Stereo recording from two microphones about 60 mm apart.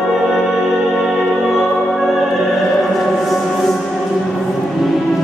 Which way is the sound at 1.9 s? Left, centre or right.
Centre.